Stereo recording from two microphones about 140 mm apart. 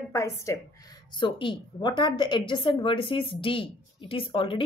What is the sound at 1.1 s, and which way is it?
A woman's voice, 35° left (ahead or behind).